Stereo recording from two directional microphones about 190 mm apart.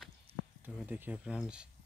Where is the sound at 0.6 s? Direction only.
10° right (ahead or behind).